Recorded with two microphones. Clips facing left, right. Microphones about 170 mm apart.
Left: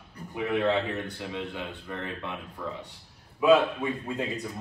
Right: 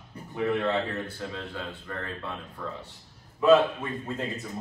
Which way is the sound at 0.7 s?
15° left (ahead or behind).